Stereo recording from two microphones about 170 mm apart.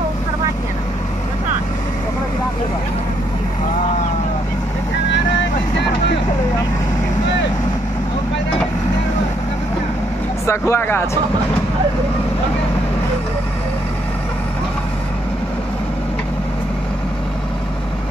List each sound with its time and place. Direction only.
10.4 s speech: 15° left (ahead or behind)